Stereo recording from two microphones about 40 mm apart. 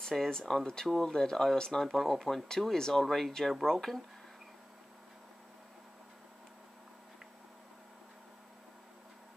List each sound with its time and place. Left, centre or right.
0.3 s speech: centre